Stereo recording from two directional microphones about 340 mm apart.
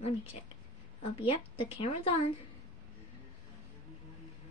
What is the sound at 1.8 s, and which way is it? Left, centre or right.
Speech, centre.